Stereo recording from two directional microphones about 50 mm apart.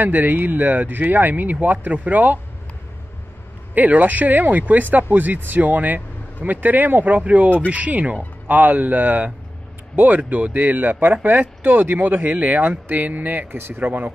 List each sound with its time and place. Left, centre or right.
0.0 s speech: right
3.7 s speech: right